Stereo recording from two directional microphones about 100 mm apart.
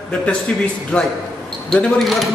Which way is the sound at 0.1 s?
10° left (ahead or behind).